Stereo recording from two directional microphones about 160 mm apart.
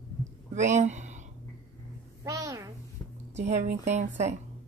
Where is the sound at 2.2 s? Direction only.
20° right (ahead or behind).